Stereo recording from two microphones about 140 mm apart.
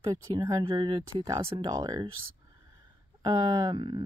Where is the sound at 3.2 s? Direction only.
30° right (ahead or behind).